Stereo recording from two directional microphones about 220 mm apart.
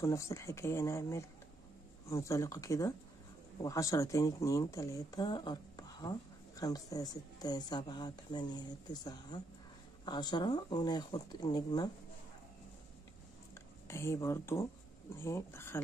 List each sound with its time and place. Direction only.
0.0 s speech: 15° left (ahead or behind)
13.8 s speech: 10° left (ahead or behind)